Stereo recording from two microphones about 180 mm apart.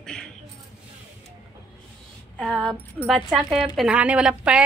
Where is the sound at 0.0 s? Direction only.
5° left (ahead or behind).